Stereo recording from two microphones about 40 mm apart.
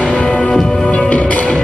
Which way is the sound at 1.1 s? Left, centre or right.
Left.